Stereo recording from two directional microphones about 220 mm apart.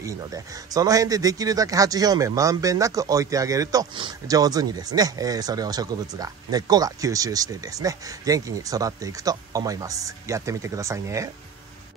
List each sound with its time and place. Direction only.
0.0 s a man's voice: 15° right (ahead or behind)